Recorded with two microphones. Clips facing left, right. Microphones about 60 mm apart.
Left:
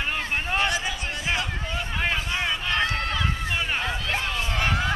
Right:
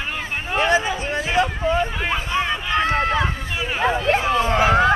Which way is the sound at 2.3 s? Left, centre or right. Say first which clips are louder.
Right 5 dB; centre.